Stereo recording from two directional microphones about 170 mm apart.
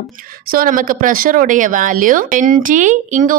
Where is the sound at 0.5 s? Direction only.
55° right (ahead or behind).